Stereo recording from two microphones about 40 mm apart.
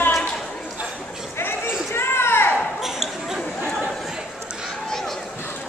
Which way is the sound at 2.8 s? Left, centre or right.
Centre.